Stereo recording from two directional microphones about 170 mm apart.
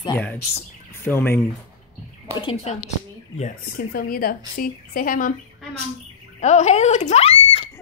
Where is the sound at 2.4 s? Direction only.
35° left (ahead or behind).